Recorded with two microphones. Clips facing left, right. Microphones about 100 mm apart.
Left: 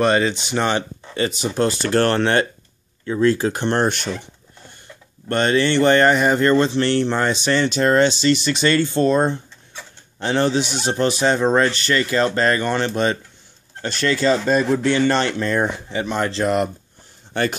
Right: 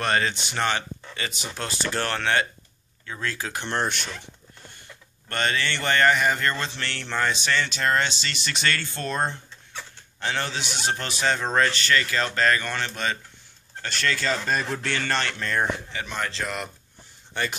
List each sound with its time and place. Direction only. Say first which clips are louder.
0.0 s speech: left 7 dB; 20° left (ahead or behind)
1.8 s speech: left 7 dB; 50° left (ahead or behind)
5.3 s speech: left 9 dB; 25° left (ahead or behind)
14.6 s speech: left 11 dB; 10° left (ahead or behind); by 16.6 s 35° left (ahead or behind)
17.3 s speech: left 8 dB; 50° left (ahead or behind)